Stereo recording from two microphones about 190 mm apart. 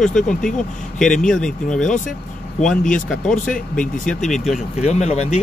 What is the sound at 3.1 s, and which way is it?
Speech, 5° left (ahead or behind).